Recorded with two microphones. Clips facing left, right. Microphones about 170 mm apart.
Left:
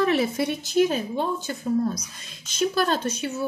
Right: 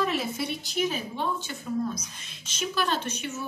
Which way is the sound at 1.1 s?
40° left (ahead or behind).